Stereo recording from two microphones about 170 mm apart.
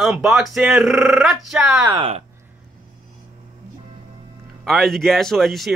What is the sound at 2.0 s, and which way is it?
Speech, 35° right (ahead or behind).